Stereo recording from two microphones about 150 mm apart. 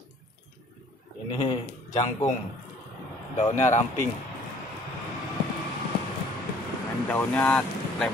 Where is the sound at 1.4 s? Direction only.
25° left (ahead or behind).